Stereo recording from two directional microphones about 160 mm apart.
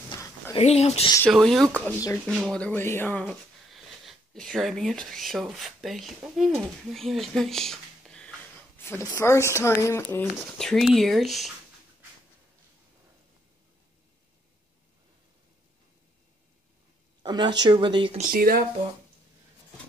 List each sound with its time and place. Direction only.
0.1 s a sound: 20° left (ahead or behind)
0.6 s speech: 40° left (ahead or behind)
1.3 s speech: centre (ahead or behind)
2.6 s speech: 15° left (ahead or behind)
3.3 s speech: centre (ahead or behind); by 10.2 s 15° left (ahead or behind)
10.6 s speech: centre (ahead or behind)
17.2 s speech: 25° right (ahead or behind)
18.1 s speech: 60° right (ahead or behind)